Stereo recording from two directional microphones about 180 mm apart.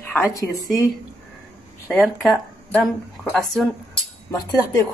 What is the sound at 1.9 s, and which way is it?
Speech, 10° left (ahead or behind).